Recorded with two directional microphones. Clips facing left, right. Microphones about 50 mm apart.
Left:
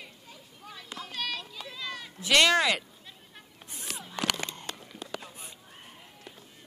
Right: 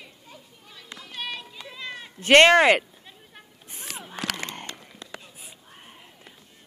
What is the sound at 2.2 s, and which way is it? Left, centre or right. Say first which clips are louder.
Speech: right 8 dB; right.